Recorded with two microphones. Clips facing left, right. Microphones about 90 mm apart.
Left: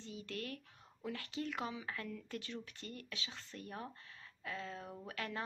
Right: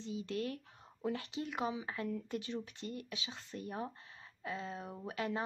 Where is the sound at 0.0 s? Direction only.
20° right (ahead or behind).